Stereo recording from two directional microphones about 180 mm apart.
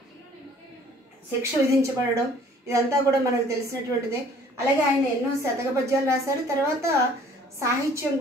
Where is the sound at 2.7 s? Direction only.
15° right (ahead or behind).